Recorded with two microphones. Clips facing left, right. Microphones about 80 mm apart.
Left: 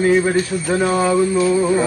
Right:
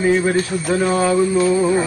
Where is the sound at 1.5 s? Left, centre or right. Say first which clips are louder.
Even; centre.